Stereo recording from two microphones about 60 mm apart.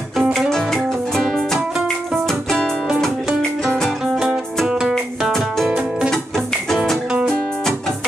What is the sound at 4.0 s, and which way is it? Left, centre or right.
Music, centre.